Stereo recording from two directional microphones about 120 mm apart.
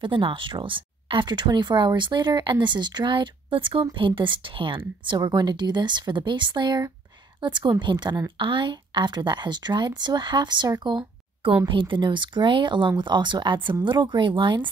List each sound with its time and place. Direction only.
0.0 s a woman's voice: 45° right (ahead or behind)